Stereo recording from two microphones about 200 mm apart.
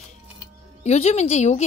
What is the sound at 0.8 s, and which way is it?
Speech, 35° left (ahead or behind).